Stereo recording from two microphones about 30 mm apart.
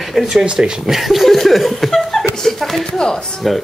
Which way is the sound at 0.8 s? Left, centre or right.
Centre.